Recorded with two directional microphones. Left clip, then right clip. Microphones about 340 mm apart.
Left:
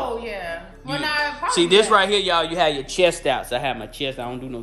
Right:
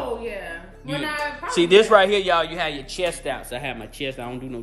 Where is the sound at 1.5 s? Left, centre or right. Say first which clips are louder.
Right 1 dB; centre.